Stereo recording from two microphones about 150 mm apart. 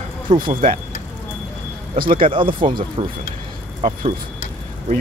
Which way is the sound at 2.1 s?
35° right (ahead or behind).